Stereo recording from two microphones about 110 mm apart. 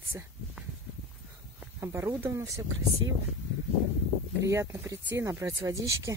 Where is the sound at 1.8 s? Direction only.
25° right (ahead or behind).